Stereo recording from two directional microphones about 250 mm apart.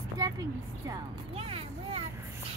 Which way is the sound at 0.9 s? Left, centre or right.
Centre.